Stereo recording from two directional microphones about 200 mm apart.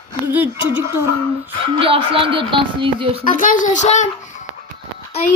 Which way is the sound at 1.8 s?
25° right (ahead or behind).